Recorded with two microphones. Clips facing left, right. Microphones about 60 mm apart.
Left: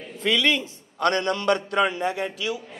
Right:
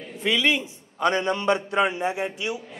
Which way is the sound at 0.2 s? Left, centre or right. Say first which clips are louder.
Even; centre.